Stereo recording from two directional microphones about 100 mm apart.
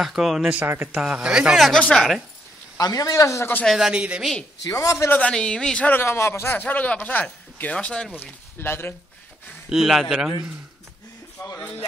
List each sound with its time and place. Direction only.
0.0 s speech: centre (ahead or behind)
0.6 s speech: 20° right (ahead or behind)
0.9 s speech: 10° right (ahead or behind)
1.6 s speech: 10° left (ahead or behind)
2.8 s speech: 35° left (ahead or behind)
3.6 s speech: 5° right (ahead or behind)
4.6 s speech: 35° left (ahead or behind)
5.2 s speech: 10° left (ahead or behind)
8.2 s speech: 20° left (ahead or behind)
9.7 s speech: 5° right (ahead or behind)